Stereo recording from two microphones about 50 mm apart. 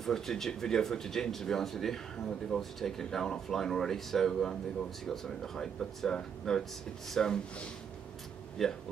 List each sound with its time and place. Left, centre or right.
0.0 s speech: centre
8.6 s speech: centre